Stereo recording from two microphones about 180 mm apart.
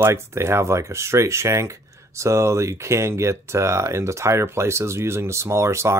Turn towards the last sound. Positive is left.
turn(degrees=-15)  # may be behind; listen again after turning